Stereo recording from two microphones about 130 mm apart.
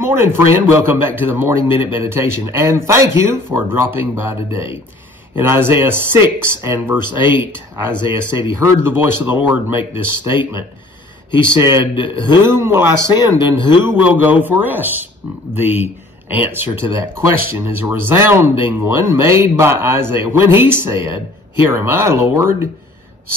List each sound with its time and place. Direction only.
0.0 s speech: 20° right (ahead or behind)
11.8 s a man's voice: 35° left (ahead or behind)
12.5 s speech: 20° right (ahead or behind)